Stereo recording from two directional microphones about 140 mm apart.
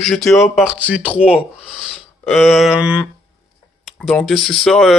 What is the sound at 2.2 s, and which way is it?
Speech, centre (ahead or behind).